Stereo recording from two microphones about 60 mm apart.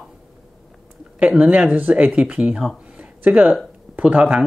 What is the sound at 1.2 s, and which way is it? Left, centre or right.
Speech, right.